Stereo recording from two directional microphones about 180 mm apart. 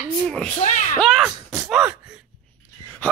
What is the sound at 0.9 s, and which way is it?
Speech, centre (ahead or behind).